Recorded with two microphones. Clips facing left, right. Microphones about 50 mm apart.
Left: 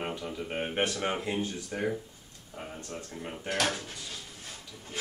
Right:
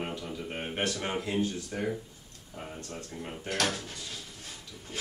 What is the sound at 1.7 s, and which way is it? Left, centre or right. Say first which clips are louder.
Speech: left 1 dB; centre.